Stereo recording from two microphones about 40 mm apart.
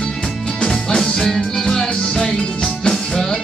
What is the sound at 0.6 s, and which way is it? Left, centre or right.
Music, centre.